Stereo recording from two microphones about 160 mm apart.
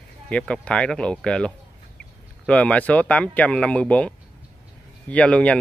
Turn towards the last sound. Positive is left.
turn(degrees=10)  # may be behind; listen again after turning